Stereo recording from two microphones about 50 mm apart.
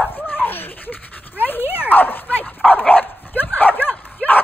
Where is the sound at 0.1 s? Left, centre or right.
Left.